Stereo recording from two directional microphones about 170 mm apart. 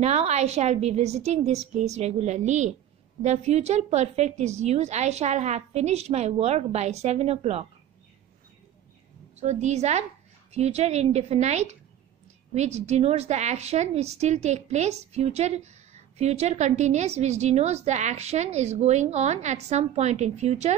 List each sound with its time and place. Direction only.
0.0 s a woman's voice: 40° right (ahead or behind)
9.4 s a woman's voice: 45° right (ahead or behind)